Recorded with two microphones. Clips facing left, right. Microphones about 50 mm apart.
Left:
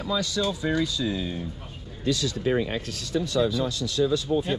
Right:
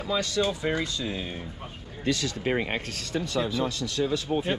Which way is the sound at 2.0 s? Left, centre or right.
Right.